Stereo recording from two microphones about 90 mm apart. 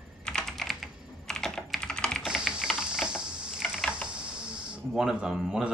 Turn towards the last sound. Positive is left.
turn(degrees=-10)  # may be behind; listen again after turning